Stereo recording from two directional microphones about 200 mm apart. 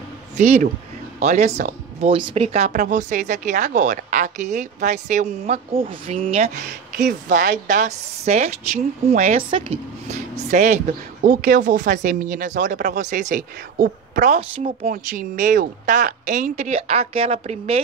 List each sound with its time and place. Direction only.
0.4 s speech: 35° right (ahead or behind)
7.0 s speech: 40° right (ahead or behind)